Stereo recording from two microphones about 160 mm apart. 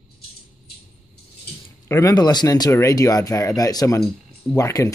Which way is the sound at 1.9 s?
20° left (ahead or behind).